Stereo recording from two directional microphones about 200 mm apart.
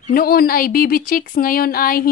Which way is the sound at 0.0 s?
45° left (ahead or behind).